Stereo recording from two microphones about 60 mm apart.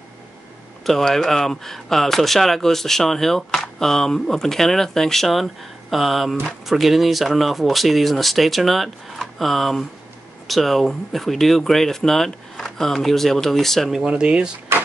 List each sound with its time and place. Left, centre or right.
0.8 s speech: centre
13.9 s speech: centre